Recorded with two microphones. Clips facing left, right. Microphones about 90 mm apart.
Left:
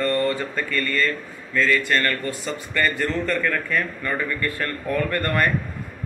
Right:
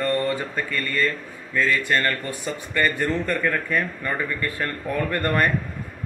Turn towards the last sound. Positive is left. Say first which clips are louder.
# even
turn(degrees=-20)  # may be behind; listen again after turning